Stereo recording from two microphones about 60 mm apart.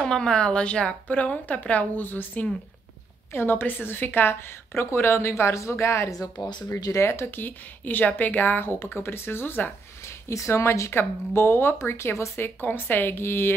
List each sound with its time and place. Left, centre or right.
0.0 s a woman's voice: centre; by 9.7 s left
10.0 s speech: left